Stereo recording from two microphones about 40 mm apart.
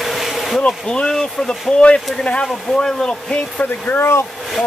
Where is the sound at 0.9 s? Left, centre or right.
Centre.